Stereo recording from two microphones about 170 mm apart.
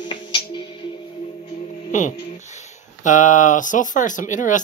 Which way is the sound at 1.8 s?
45° left (ahead or behind).